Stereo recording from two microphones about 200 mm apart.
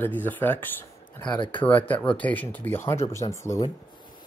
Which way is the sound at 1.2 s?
25° left (ahead or behind).